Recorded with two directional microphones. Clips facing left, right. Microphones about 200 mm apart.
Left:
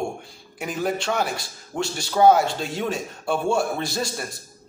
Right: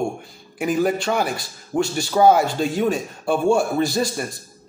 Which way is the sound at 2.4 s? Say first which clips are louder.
Right 5 dB; 50° right (ahead or behind).